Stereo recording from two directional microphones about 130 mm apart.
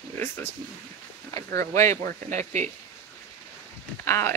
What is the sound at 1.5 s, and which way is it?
Speech, 25° left (ahead or behind).